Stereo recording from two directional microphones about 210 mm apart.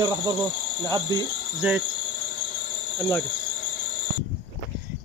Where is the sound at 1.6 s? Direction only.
5° right (ahead or behind).